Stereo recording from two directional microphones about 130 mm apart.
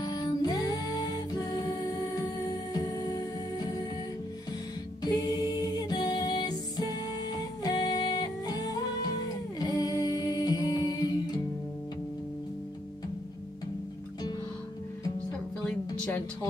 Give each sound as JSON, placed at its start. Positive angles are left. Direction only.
{"t": 0.0, "sound": "music", "side_deg": 30}
{"t": 5.0, "sound": "music", "side_deg": 30}